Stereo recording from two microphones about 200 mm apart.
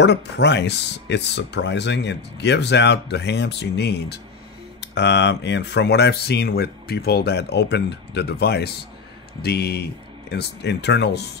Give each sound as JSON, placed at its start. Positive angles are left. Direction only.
{"t": 0.0, "sound": "speech", "side_deg": 60}